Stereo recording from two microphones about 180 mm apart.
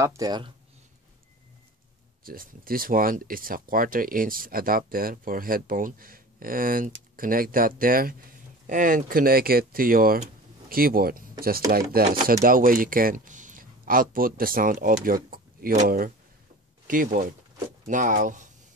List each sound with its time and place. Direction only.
0.0 s speech: 20° right (ahead or behind)
2.2 s speech: 55° right (ahead or behind)